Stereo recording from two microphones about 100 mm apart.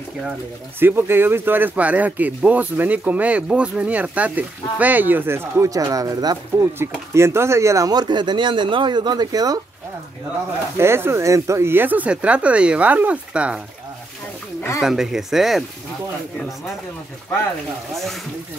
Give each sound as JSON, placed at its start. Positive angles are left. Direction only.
{"t": 0.7, "sound": "speech", "side_deg": -20}
{"t": 7.2, "sound": "speech", "side_deg": -25}
{"t": 7.9, "sound": "speech", "side_deg": -45}
{"t": 10.8, "sound": "speech", "side_deg": -25}
{"t": 14.8, "sound": "speech", "side_deg": -5}